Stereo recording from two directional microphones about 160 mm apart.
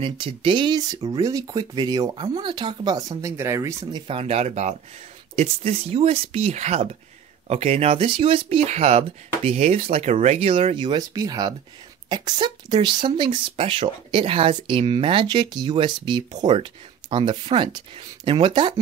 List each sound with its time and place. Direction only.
0.0 s speech: 30° right (ahead or behind)
4.1 s speech: 40° right (ahead or behind)